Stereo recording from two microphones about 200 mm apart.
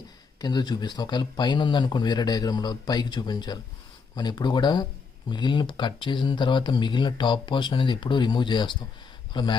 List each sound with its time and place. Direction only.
0.4 s speech: 20° left (ahead or behind)